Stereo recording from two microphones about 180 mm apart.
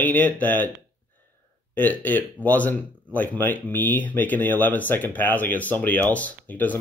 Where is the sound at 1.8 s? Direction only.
10° left (ahead or behind).